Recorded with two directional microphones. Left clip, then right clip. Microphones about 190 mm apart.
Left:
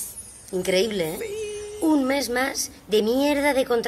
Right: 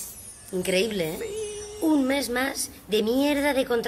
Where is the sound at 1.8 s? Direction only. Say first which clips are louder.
Left 2 dB; 15° left (ahead or behind).